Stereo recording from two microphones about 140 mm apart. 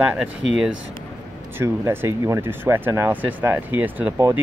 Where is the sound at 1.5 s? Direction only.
20° right (ahead or behind).